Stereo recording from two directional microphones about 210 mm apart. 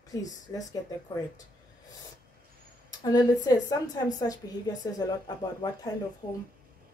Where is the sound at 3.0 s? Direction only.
20° left (ahead or behind).